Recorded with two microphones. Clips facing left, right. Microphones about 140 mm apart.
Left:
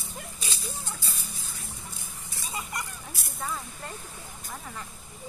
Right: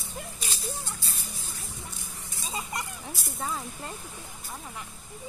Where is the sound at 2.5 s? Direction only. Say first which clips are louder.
Right 1 dB; 25° right (ahead or behind).